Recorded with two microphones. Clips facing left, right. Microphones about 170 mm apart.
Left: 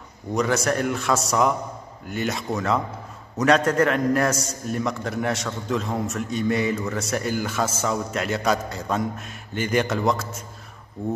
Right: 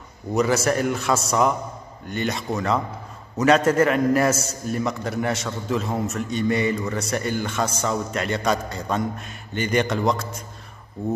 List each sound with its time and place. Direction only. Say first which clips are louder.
0.3 s a man's voice: right 2 dB; 5° right (ahead or behind)